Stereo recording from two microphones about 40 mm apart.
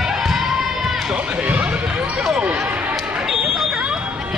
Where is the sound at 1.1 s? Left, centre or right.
Right.